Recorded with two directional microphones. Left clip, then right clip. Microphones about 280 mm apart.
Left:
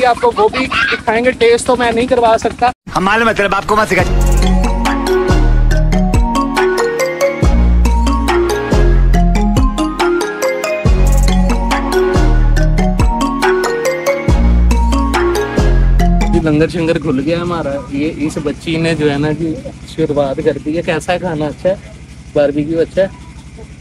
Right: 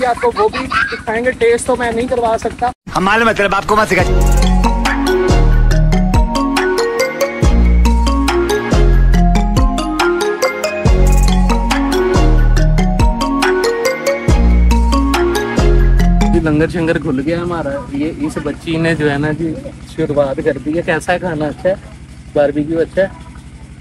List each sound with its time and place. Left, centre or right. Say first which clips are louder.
0.0 s a sound: left 3 dB; centre
10.8 s music: right 1 dB; centre
20.0 s speech: even; centre